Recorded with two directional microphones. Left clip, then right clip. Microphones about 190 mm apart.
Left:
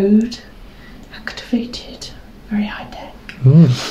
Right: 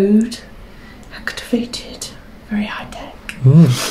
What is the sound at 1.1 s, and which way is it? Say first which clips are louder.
Whispering: right 2 dB; 5° right (ahead or behind).